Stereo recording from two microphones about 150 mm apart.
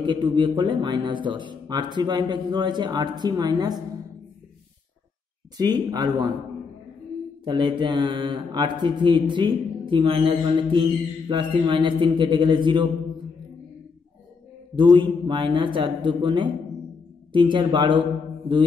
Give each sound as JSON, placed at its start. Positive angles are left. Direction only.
{"t": 0.0, "sound": "a man's voice", "side_deg": -30}
{"t": 5.6, "sound": "a man's voice", "side_deg": -25}
{"t": 7.4, "sound": "speech", "side_deg": -30}
{"t": 14.8, "sound": "speech", "side_deg": -30}